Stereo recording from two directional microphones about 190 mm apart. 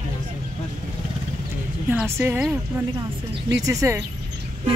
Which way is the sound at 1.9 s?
10° right (ahead or behind).